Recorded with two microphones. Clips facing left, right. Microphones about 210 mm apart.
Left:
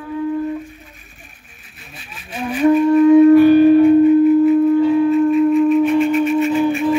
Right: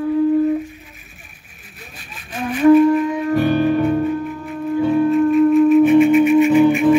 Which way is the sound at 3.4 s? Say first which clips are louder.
Left 7 dB; 50° right (ahead or behind).